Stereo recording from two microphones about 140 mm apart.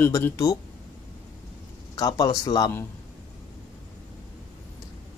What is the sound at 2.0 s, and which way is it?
Speech, 30° left (ahead or behind).